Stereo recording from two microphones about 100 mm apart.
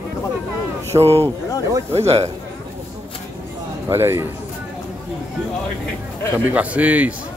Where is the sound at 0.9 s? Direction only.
45° right (ahead or behind).